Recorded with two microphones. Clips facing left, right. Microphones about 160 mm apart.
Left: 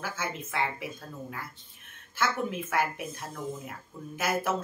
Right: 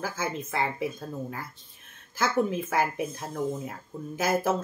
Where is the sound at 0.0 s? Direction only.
40° right (ahead or behind).